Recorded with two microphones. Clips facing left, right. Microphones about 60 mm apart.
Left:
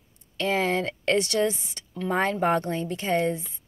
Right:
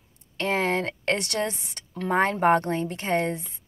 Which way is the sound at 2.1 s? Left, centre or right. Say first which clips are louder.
Right 3 dB; right.